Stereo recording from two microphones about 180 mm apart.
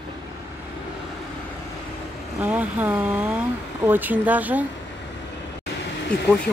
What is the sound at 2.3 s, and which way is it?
Speech, 10° right (ahead or behind).